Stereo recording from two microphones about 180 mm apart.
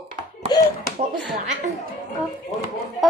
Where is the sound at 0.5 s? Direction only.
20° left (ahead or behind).